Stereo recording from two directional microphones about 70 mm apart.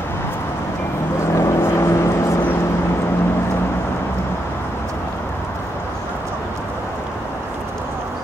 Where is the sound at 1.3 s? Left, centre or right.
Left.